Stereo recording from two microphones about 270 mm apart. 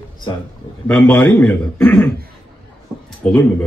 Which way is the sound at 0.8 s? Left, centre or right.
Centre.